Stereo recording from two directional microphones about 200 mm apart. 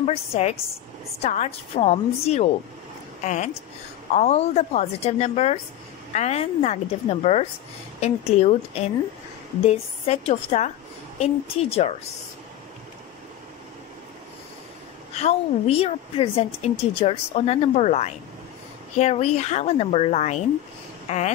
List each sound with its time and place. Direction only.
0.0 s a woman's voice: 30° left (ahead or behind)
15.1 s a woman's voice: 30° left (ahead or behind)